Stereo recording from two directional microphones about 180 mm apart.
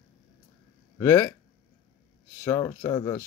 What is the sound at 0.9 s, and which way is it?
Speech, 15° left (ahead or behind).